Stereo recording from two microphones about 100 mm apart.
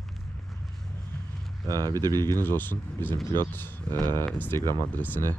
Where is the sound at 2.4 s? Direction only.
20° left (ahead or behind).